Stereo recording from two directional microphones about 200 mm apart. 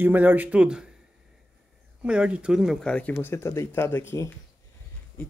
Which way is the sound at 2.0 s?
5° right (ahead or behind).